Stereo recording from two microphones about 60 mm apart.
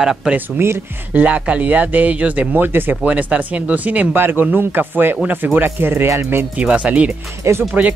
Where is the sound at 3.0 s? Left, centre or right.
Right.